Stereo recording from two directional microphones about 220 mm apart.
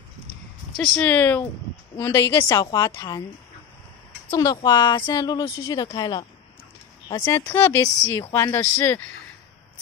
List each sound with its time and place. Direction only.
0.7 s a woman's voice: 5° left (ahead or behind)
4.3 s a woman's voice: 20° left (ahead or behind)